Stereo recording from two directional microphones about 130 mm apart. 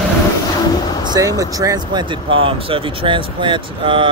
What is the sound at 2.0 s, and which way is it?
Speech, 40° right (ahead or behind).